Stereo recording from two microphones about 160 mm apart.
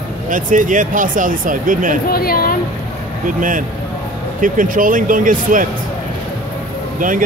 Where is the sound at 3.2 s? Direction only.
55° right (ahead or behind).